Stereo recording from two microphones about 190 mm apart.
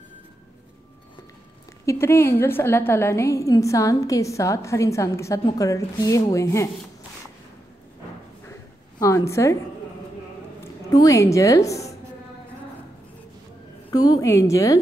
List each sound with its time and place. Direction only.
1.9 s a woman's voice: 15° left (ahead or behind)
9.0 s a woman's voice: 15° left (ahead or behind)
10.9 s a woman's voice: 20° left (ahead or behind)
13.8 s a woman's voice: 20° left (ahead or behind)